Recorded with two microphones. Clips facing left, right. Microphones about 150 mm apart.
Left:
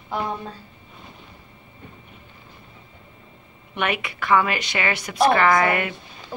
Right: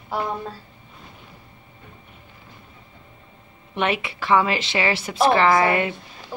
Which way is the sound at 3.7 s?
30° right (ahead or behind).